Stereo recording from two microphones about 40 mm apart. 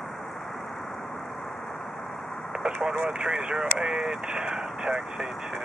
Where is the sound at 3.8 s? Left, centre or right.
Centre.